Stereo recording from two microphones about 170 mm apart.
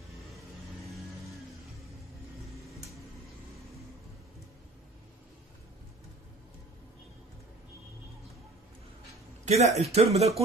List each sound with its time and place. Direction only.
9.4 s speech: 40° right (ahead or behind)